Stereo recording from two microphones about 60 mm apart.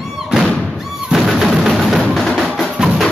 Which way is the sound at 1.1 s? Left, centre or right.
Centre.